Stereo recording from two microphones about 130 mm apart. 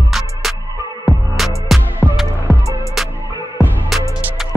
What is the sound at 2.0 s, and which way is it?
Music, 10° left (ahead or behind).